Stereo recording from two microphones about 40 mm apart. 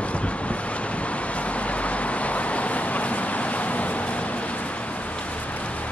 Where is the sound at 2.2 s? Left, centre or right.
Left.